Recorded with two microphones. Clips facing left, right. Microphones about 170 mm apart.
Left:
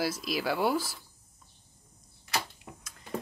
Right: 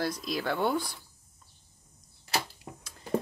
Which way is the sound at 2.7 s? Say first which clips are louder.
Right 3 dB; 35° right (ahead or behind).